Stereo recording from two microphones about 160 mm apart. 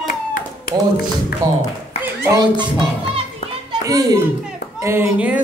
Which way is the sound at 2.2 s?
20° right (ahead or behind).